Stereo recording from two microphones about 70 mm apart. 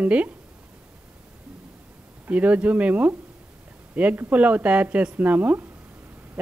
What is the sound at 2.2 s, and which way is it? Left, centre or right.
A woman's voice, right.